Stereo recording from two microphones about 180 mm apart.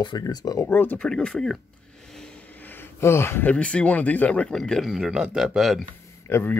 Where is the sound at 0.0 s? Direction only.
25° left (ahead or behind); by 5.9 s centre (ahead or behind).